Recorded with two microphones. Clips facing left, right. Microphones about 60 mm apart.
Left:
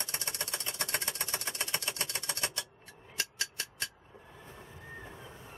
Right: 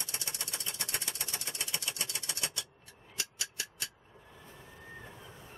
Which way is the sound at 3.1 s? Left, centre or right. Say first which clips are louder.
Left 3 dB; left.